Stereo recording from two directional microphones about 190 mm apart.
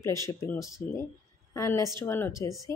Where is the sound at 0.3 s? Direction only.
15° left (ahead or behind).